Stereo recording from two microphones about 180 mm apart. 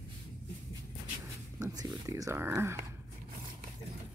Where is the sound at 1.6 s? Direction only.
20° right (ahead or behind).